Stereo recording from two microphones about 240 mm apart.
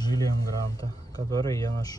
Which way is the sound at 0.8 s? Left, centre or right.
Right.